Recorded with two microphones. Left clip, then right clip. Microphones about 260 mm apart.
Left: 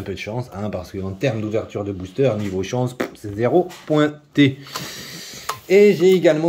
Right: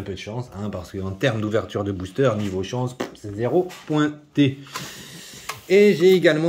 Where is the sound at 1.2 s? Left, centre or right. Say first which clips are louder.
Even; centre.